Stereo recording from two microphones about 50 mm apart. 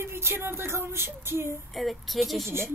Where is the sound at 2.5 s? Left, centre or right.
Right.